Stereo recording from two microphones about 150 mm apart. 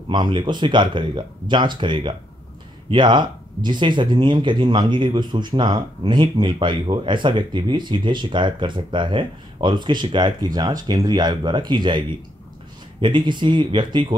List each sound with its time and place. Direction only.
0.1 s speech: 30° right (ahead or behind)
13.0 s speech: 30° right (ahead or behind)